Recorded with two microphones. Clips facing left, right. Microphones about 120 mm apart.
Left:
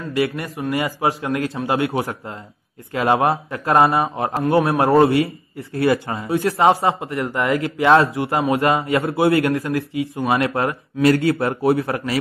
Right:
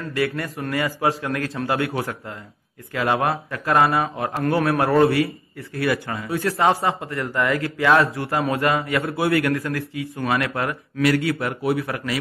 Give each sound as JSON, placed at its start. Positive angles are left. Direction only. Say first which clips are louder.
{"t": 0.1, "sound": "a man's voice", "louder": "left 3 dB", "side_deg": 25}